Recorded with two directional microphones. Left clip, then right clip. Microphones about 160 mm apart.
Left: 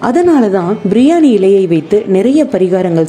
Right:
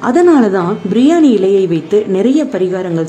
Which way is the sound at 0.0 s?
25° left (ahead or behind).